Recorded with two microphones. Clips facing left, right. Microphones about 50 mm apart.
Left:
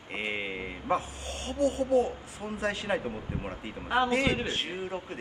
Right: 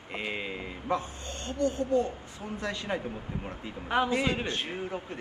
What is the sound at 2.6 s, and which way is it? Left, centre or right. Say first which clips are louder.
Speech: left 3 dB; left.